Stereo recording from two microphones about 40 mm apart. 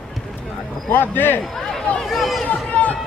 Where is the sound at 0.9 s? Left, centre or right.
Left.